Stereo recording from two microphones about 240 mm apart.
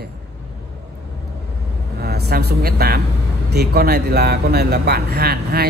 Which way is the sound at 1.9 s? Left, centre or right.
Right.